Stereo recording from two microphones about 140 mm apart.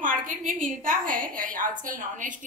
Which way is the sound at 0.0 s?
70° right (ahead or behind).